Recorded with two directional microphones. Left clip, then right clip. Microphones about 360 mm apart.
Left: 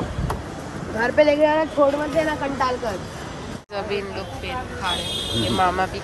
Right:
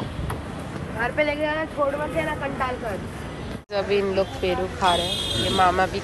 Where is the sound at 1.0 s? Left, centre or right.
Left.